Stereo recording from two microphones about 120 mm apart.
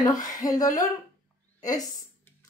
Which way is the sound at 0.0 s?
30° left (ahead or behind).